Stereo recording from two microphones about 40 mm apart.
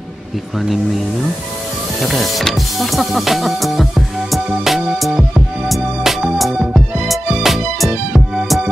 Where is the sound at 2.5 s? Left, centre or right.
Centre.